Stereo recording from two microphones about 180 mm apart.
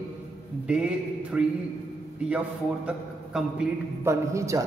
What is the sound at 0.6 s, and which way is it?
Speech, 5° right (ahead or behind).